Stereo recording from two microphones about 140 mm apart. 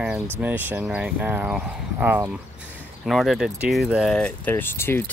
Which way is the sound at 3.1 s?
Centre (ahead or behind).